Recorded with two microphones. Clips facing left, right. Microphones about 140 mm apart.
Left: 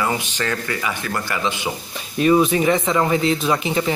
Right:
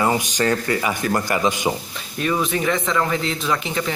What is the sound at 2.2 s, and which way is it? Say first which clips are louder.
Speech: left 6 dB; 15° left (ahead or behind).